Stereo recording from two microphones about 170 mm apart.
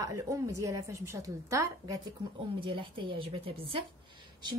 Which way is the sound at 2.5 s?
30° right (ahead or behind).